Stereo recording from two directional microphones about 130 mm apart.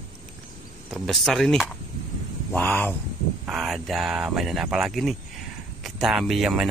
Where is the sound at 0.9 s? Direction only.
Centre (ahead or behind).